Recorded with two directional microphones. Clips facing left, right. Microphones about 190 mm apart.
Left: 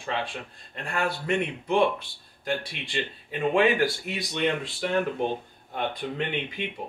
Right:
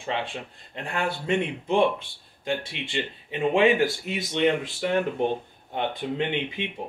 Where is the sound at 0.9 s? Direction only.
25° right (ahead or behind).